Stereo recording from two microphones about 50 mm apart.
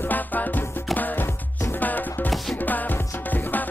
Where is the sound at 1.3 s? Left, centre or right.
Left.